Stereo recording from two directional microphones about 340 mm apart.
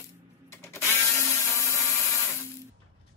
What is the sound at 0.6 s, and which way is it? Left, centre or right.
Tools, centre.